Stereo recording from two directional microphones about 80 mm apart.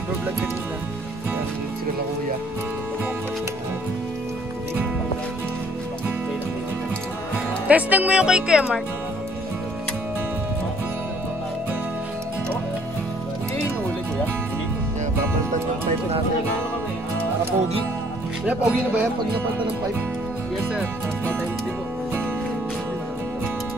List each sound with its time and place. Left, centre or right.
7.6 s speech: centre
18.5 s speech: centre